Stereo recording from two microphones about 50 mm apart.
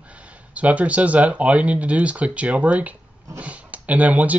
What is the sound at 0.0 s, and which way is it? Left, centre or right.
Speech, right.